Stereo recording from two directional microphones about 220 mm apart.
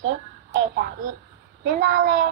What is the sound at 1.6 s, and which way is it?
Speech, 35° right (ahead or behind).